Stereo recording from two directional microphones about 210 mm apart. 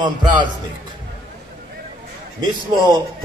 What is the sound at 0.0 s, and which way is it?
Speech, 20° right (ahead or behind).